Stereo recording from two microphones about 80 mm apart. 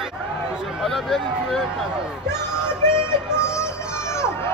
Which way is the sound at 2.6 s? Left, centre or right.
Left.